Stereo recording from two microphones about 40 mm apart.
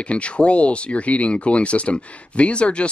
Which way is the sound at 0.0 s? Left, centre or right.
Left.